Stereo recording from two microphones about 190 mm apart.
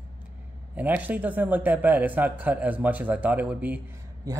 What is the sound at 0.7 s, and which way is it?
Speech, 10° right (ahead or behind).